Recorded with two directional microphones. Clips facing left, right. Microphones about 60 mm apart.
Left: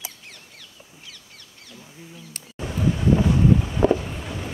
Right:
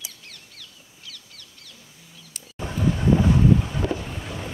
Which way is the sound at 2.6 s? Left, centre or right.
Right.